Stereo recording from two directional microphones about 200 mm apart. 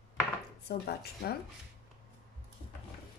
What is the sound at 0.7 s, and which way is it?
Speech, 50° left (ahead or behind).